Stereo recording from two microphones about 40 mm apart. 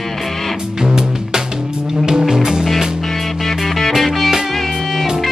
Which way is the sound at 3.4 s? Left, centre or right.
Centre.